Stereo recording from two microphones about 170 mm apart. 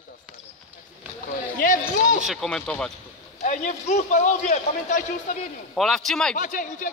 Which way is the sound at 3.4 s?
45° left (ahead or behind).